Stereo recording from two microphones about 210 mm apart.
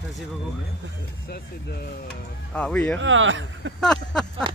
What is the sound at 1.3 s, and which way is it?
Speech, 50° left (ahead or behind).